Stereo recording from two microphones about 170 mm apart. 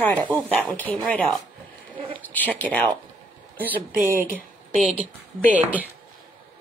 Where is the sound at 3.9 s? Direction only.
55° right (ahead or behind).